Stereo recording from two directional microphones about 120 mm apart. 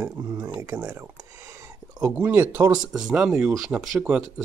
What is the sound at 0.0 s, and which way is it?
Speech, 25° right (ahead or behind).